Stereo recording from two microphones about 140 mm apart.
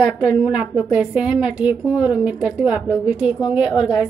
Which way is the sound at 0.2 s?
5° right (ahead or behind).